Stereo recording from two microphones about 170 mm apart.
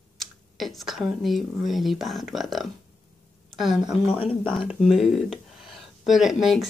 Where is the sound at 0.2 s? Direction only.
Centre (ahead or behind).